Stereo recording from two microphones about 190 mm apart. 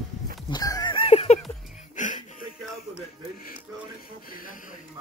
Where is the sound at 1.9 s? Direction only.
40° left (ahead or behind).